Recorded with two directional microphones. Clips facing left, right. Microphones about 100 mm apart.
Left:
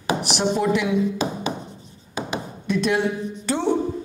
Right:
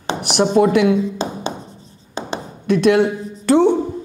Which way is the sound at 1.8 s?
30° right (ahead or behind).